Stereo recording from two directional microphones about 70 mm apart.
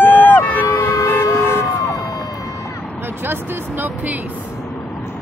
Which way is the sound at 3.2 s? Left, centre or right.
Right.